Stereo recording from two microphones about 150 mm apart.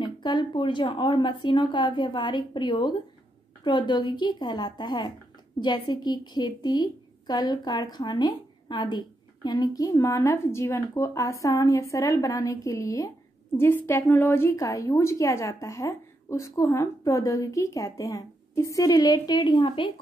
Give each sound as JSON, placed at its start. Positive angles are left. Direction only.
{"t": 0.0, "sound": "a woman's voice", "side_deg": 30}